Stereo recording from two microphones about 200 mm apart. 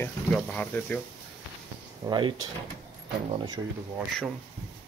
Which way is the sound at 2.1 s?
25° right (ahead or behind).